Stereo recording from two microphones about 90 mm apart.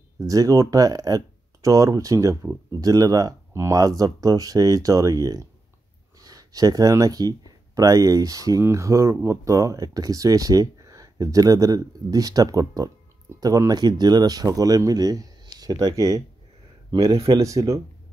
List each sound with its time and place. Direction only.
0.2 s speech: 40° right (ahead or behind)
17.3 s speech: 40° right (ahead or behind)